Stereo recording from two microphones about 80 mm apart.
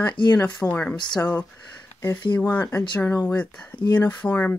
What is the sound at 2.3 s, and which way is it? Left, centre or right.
Speech, centre.